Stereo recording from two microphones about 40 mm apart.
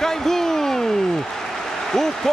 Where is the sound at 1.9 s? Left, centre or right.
Centre.